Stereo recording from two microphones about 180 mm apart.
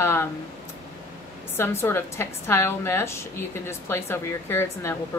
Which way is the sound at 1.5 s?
15° left (ahead or behind).